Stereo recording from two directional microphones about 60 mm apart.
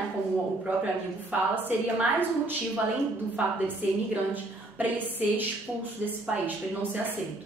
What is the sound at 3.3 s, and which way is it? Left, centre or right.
A woman's voice, right.